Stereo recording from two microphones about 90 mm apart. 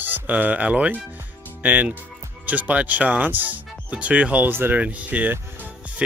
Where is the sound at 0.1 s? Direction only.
15° right (ahead or behind).